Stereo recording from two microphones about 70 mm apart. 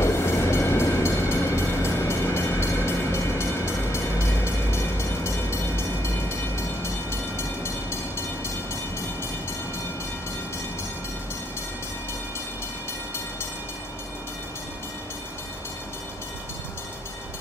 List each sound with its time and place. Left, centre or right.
0.0 s train: left
7.1 s train: left